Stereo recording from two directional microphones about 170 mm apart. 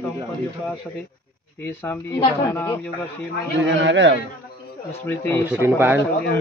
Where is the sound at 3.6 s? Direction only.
90° right.